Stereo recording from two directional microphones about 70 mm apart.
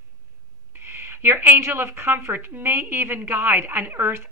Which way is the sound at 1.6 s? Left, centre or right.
Right.